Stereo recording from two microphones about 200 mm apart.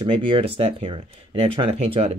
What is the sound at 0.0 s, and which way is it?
Speech, 30° right (ahead or behind).